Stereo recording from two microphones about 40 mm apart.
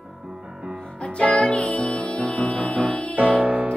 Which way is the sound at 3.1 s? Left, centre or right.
Right.